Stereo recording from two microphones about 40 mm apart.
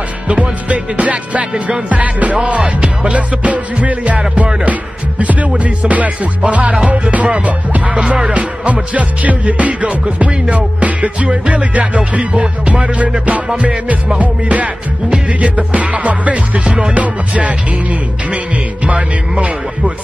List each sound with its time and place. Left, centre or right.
0.3 s music: right
5.2 s music: right
18.9 s music: right